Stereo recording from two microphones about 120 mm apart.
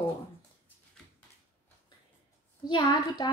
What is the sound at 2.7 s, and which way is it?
Speech, 35° left (ahead or behind).